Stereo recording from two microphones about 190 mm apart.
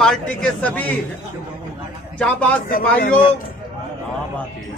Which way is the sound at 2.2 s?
5° left (ahead or behind).